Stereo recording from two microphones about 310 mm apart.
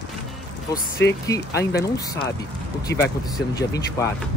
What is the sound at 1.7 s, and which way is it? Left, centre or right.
Speech, centre.